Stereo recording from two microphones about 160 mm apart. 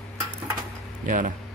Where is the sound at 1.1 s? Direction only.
55° right (ahead or behind).